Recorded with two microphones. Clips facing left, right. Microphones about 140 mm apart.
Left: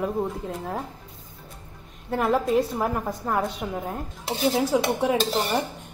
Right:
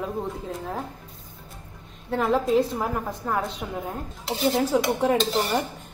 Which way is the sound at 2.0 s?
5° left (ahead or behind).